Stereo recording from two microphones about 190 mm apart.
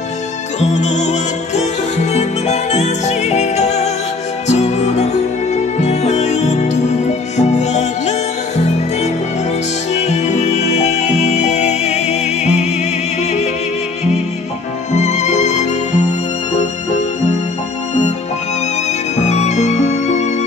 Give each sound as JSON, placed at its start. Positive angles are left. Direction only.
{"t": 0.6, "sound": "music", "side_deg": 35}
{"t": 14.9, "sound": "music", "side_deg": 35}
{"t": 19.2, "sound": "music", "side_deg": 35}